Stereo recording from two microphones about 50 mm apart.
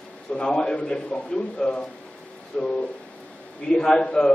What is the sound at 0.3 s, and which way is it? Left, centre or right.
A man's voice, centre.